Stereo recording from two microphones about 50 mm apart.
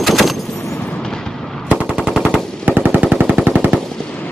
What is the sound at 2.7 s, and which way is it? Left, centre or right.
Machine gun, right.